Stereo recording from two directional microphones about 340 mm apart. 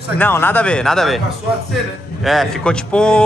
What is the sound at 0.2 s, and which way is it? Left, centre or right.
A man's voice, centre.